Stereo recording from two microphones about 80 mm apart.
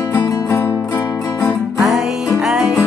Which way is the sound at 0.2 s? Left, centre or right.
Left.